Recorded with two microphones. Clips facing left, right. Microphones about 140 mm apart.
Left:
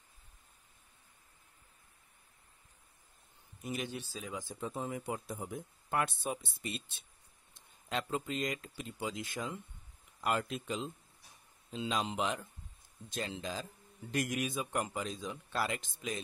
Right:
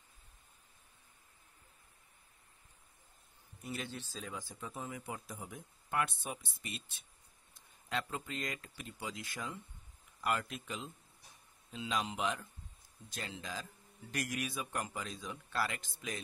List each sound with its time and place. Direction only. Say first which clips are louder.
3.6 s speech: left 4 dB; 15° left (ahead or behind)
4.6 s a man's voice: left 9 dB; 30° left (ahead or behind)